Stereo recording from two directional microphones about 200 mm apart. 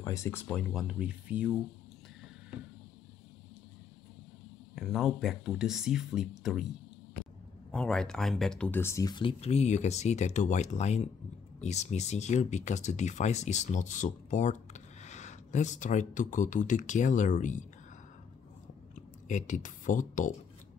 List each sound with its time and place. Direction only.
0.0 s speech: 15° left (ahead or behind); by 1.6 s 5° right (ahead or behind)
4.7 s speech: centre (ahead or behind)
7.7 s speech: 5° left (ahead or behind); by 17.6 s 40° left (ahead or behind)
19.2 s speech: 40° left (ahead or behind)